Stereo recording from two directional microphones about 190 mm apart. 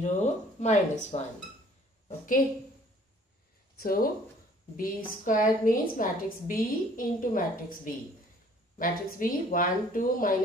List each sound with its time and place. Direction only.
0.0 s a woman's voice: 35° left (ahead or behind)
3.8 s a woman's voice: 50° left (ahead or behind)